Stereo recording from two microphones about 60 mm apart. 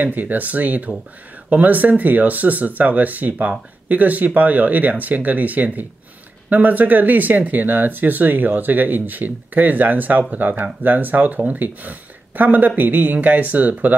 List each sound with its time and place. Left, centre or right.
0.0 s speech: right